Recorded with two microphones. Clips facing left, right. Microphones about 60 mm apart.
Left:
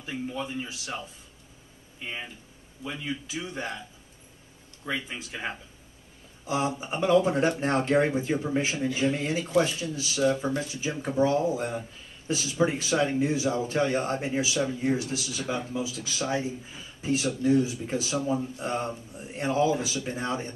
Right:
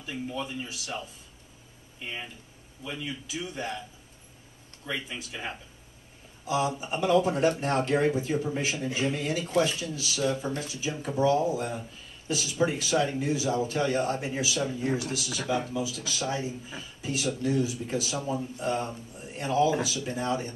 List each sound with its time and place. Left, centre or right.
0.3 s a man's voice: left
2.8 s a man's voice: left
4.8 s a man's voice: left